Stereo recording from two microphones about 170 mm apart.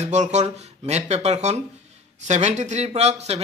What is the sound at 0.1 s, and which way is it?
Speech, 45° right (ahead or behind).